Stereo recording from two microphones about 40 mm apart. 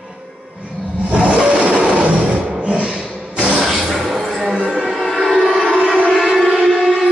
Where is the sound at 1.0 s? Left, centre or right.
Right.